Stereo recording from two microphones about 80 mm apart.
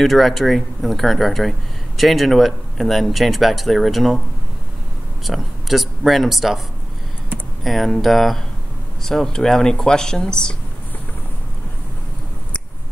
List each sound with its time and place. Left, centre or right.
0.0 s speech: centre
5.2 s speech: centre
7.6 s speech: centre